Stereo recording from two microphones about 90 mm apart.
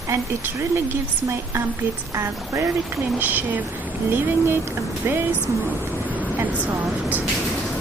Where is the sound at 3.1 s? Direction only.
20° right (ahead or behind).